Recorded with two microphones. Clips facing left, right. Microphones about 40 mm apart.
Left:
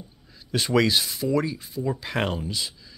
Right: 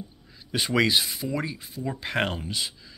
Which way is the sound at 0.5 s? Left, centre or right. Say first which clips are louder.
Left 2 dB; centre.